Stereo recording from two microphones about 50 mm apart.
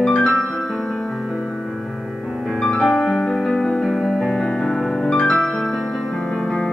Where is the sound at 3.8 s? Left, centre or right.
Centre.